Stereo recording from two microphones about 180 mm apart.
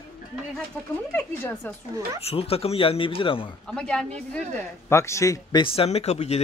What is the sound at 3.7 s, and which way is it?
Speech, 5° left (ahead or behind).